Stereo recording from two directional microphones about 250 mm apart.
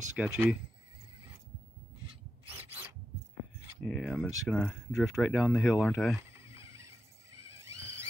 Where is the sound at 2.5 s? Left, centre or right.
Centre.